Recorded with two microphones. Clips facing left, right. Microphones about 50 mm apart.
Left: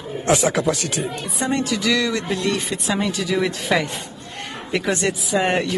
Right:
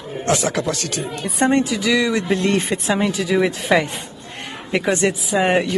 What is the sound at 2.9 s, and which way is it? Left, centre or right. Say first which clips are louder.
A man's voice: right 2 dB; centre.